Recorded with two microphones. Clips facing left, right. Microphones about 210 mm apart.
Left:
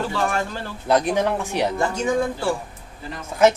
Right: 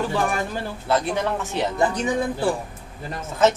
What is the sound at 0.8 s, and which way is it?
Speech, 15° left (ahead or behind).